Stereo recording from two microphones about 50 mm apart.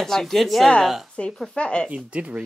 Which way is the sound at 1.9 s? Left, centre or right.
Right.